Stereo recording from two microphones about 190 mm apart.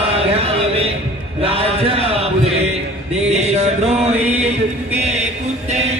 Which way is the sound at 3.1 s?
35° right (ahead or behind).